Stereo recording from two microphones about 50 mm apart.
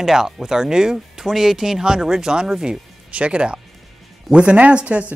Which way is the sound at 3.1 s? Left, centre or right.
Right.